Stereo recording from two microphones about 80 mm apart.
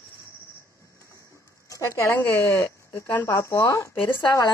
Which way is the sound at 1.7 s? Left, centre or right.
Left.